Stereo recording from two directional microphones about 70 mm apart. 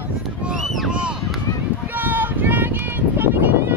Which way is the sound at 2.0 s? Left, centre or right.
Right.